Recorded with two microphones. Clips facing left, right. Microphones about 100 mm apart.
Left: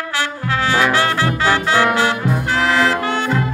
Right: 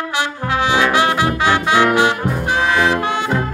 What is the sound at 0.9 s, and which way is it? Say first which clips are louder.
Music: right 2 dB; 15° right (ahead or behind).